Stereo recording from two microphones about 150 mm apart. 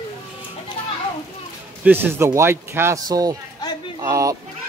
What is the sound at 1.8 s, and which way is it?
Speech, 15° right (ahead or behind).